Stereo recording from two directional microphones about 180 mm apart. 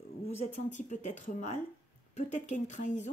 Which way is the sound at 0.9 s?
40° left (ahead or behind).